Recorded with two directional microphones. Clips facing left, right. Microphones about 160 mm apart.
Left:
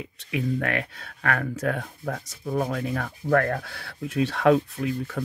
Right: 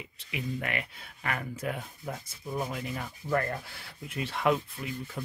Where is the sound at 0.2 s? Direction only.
90° left.